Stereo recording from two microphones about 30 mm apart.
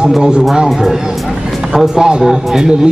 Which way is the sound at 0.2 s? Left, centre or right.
Right.